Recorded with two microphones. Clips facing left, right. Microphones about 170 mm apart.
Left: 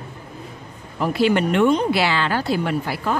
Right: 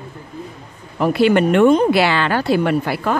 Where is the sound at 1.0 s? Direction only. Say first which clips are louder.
Right 4 dB; 60° right (ahead or behind).